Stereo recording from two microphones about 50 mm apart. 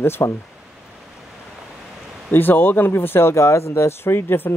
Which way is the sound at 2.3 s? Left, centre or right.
Left.